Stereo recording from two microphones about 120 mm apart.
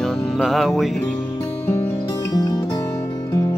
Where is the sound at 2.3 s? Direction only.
30° left (ahead or behind).